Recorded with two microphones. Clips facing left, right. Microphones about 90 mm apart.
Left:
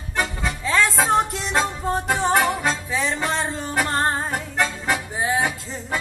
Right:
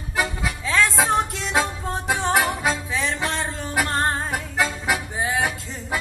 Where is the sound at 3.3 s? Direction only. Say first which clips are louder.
Left 3 dB; 15° left (ahead or behind).